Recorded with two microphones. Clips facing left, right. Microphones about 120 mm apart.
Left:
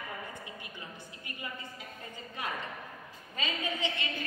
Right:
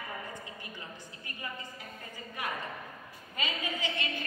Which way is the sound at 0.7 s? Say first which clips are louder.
Even; 20° left (ahead or behind).